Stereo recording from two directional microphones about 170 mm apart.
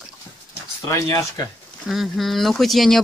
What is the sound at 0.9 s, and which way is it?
Speech, 20° left (ahead or behind).